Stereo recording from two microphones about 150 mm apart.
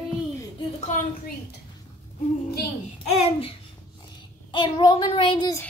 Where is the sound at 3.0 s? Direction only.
45° left (ahead or behind).